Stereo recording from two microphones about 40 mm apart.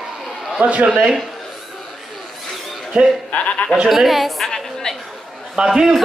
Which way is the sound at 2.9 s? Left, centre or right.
Centre.